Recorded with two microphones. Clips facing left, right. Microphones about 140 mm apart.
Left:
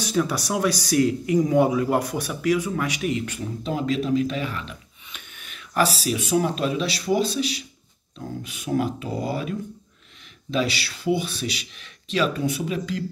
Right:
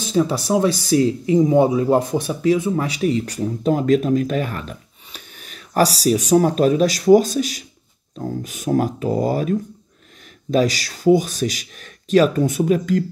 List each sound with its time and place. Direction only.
0.0 s speech: 25° right (ahead or behind); by 13.0 s 45° right (ahead or behind)